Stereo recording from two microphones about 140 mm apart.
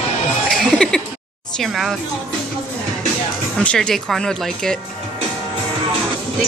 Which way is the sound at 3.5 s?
5° left (ahead or behind).